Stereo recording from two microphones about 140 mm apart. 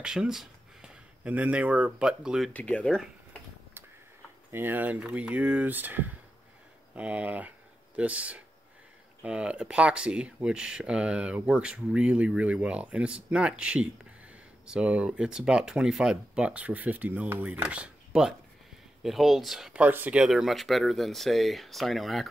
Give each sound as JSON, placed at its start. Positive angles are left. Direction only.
{"t": 0.0, "sound": "speech", "side_deg": -5}
{"t": 2.5, "sound": "speech", "side_deg": 10}
{"t": 4.5, "sound": "speech", "side_deg": -15}